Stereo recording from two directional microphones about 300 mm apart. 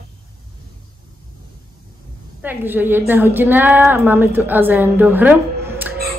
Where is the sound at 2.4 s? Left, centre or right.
Centre.